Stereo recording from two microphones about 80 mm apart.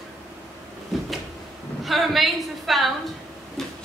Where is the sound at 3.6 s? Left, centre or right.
Centre.